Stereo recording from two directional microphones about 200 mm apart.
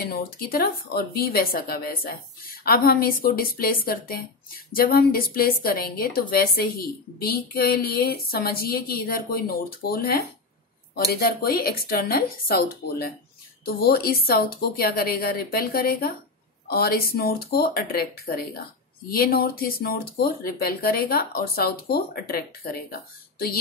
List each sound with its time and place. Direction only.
0.0 s a woman's voice: 50° left (ahead or behind)